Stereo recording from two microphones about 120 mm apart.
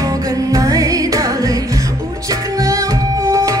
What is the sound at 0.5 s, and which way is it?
Music, 30° right (ahead or behind).